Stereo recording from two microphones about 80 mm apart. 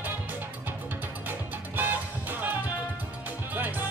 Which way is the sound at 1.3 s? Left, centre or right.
Right.